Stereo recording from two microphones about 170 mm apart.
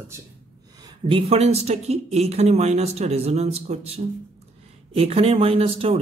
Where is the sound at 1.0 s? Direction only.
35° right (ahead or behind).